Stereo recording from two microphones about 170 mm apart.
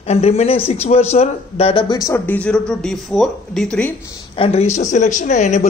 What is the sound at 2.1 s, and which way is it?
Speech, 10° left (ahead or behind).